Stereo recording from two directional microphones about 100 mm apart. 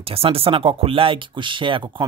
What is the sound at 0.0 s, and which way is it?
Speech, 70° right (ahead or behind).